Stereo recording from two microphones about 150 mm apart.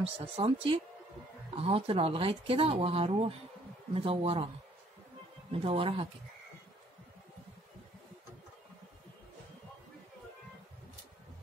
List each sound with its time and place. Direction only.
0.0 s speech: 40° right (ahead or behind)
5.5 s speech: 40° right (ahead or behind)